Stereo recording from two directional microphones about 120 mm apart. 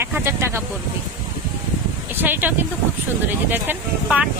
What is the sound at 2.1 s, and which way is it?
Speech, 15° right (ahead or behind).